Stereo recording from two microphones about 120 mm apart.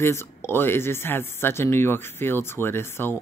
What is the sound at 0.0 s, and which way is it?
Speech, 20° left (ahead or behind).